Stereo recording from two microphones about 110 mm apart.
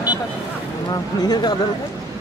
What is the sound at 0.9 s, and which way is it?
Speech, 40° left (ahead or behind).